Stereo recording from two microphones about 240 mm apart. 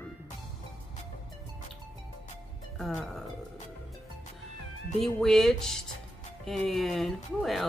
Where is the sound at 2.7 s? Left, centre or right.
Centre.